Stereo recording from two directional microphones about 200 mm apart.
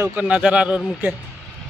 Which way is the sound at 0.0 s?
10° right (ahead or behind).